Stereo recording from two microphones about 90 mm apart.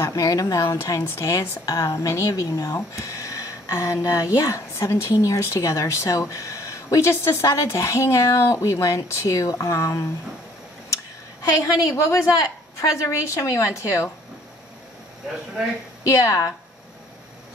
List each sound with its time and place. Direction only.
0.0 s a woman's voice: 40° left (ahead or behind)
11.5 s a woman's voice: 35° left (ahead or behind)
16.1 s a woman's voice: 35° left (ahead or behind)